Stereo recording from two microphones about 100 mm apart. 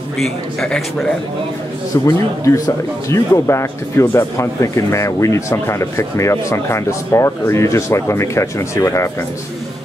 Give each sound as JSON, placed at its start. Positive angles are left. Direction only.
{"t": 0.2, "sound": "a man's voice", "side_deg": 0}
{"t": 2.0, "sound": "speech", "side_deg": 30}